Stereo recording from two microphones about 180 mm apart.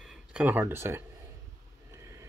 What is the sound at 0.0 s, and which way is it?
Speech, 5° right (ahead or behind).